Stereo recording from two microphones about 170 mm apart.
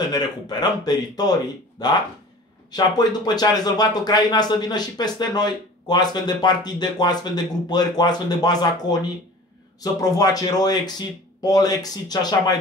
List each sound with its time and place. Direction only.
0.1 s speech: 25° left (ahead or behind)